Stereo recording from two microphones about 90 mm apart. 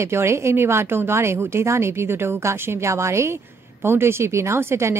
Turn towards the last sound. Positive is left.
turn(degrees=-30)  # may be behind; listen again after turning